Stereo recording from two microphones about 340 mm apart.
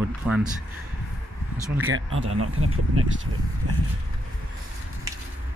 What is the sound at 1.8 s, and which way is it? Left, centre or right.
Speech, right.